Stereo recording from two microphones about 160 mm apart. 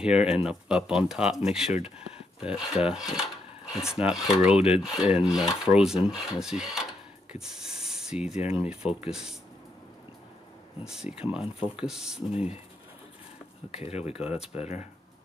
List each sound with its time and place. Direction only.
0.0 s rub: 5° right (ahead or behind)
7.3 s speech: 5° right (ahead or behind)
10.8 s rub: 5° right (ahead or behind)
12.3 s speech: 40° left (ahead or behind)
13.7 s speech: 40° left (ahead or behind)